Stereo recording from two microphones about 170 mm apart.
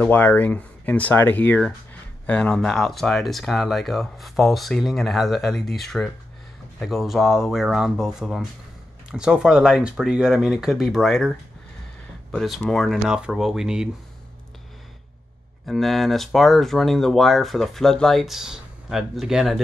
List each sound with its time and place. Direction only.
0.0 s speech: 10° left (ahead or behind)
15.6 s speech: centre (ahead or behind)